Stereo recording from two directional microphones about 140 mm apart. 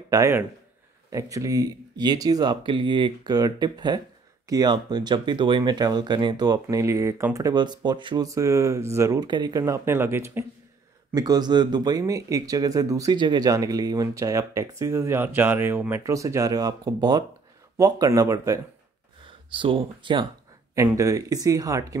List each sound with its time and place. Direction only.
0.1 s speech: 20° right (ahead or behind)
8.3 s speech: 20° right (ahead or behind)
11.1 s speech: 30° right (ahead or behind)
19.2 s speech: 35° right (ahead or behind)
20.7 s speech: 20° right (ahead or behind)